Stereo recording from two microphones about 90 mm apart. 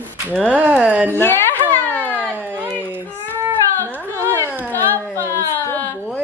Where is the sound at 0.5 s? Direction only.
15° right (ahead or behind).